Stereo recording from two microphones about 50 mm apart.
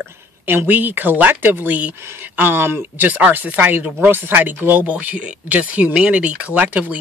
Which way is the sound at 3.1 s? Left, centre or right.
Right.